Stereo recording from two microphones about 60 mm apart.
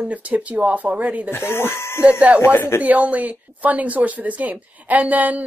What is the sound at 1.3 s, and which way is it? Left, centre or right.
Speech, left.